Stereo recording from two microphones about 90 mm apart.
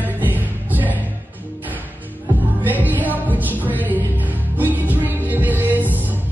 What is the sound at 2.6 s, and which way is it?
Music, 20° right (ahead or behind).